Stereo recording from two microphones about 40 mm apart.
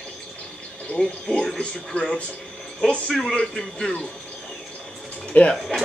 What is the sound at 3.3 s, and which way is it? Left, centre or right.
Speech, left.